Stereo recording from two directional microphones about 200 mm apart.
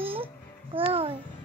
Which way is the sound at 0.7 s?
25° right (ahead or behind).